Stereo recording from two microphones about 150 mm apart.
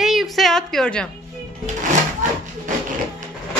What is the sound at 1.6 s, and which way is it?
Sewing machine, 55° right (ahead or behind).